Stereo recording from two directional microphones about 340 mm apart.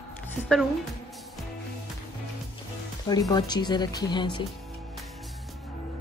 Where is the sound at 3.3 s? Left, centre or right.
Centre.